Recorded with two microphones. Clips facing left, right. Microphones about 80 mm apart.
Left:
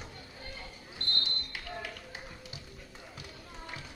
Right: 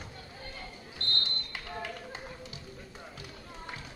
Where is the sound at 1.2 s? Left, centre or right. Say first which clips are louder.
Right 1 dB; right.